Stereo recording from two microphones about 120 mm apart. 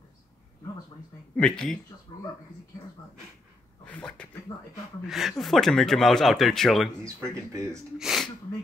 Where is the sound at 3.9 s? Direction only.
10° left (ahead or behind).